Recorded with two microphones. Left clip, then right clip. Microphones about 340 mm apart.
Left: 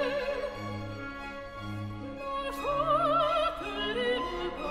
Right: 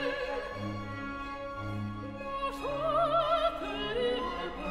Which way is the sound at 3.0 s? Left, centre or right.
Left.